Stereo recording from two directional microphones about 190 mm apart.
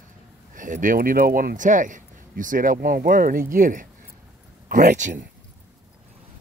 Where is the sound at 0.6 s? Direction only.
45° right (ahead or behind).